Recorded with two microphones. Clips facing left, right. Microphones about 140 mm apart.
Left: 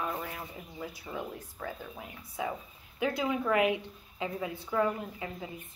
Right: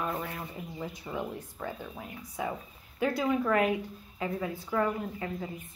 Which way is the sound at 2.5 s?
10° left (ahead or behind).